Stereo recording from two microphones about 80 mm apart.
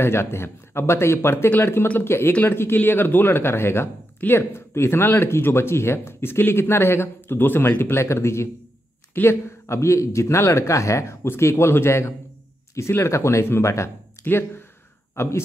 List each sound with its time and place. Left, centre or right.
0.0 s speech: left